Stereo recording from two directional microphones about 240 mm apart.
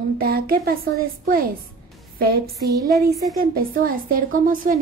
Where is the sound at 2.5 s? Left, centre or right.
Centre.